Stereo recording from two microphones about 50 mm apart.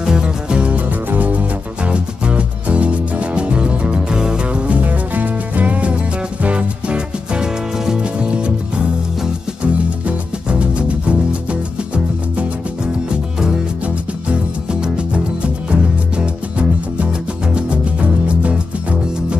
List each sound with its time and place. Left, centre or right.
0.0 s music: centre
7.8 s music: centre
8.2 s music: right
14.3 s music: centre